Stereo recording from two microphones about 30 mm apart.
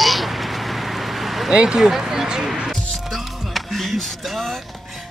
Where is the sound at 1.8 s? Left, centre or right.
Centre.